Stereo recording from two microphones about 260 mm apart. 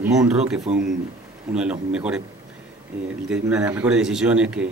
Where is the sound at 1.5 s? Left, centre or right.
Centre.